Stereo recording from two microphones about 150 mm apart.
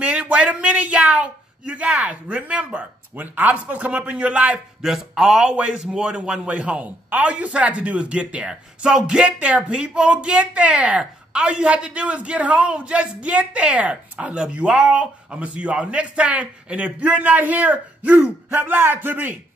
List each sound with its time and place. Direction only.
0.0 s speech: 10° right (ahead or behind)